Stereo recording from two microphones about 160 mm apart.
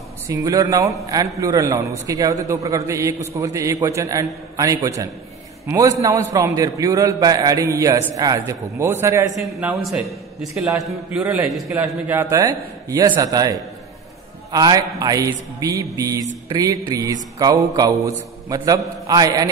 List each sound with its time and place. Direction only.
0.3 s a man's voice: 25° right (ahead or behind)
11.2 s a man's voice: 15° right (ahead or behind)